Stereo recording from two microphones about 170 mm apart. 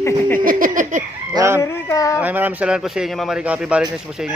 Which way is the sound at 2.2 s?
10° right (ahead or behind).